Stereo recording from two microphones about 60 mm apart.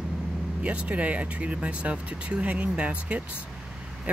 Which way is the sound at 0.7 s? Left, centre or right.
Right.